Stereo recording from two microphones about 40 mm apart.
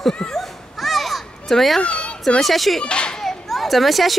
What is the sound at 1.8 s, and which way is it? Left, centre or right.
Children playing, left.